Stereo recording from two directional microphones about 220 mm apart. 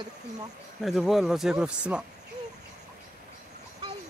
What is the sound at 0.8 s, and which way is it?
Speech, centre (ahead or behind).